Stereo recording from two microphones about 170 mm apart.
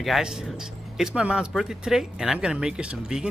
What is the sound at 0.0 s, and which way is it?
Speech, centre (ahead or behind).